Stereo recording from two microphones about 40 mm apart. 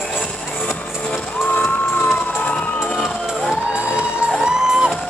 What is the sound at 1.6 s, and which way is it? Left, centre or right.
Emergency vehicle, left.